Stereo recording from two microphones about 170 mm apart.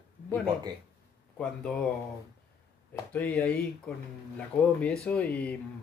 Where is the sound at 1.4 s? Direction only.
5° left (ahead or behind).